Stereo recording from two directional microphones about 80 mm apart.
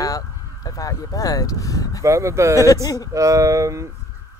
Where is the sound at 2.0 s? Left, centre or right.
Right.